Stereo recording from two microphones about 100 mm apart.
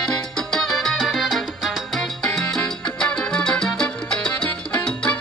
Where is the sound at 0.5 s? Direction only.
5° left (ahead or behind).